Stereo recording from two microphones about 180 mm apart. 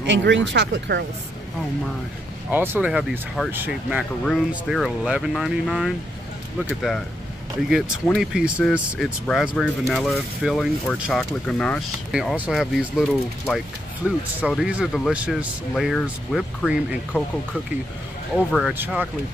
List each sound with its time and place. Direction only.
0.0 s speech: 90° right
2.5 s speech: 10° right (ahead or behind)
7.7 s speech: centre (ahead or behind)
14.0 s speech: 5° right (ahead or behind)
18.3 s speech: centre (ahead or behind)